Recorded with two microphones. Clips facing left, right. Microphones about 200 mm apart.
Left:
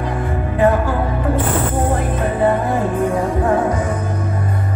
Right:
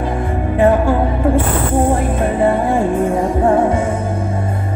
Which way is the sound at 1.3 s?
30° right (ahead or behind).